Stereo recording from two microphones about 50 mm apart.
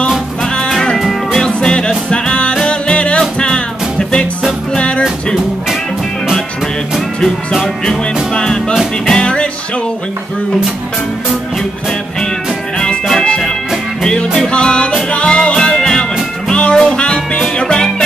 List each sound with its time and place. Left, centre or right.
0.4 s music: centre
0.9 s music: centre
1.4 s music: centre
4.7 s music: left
7.2 s music: centre
12.7 s music: centre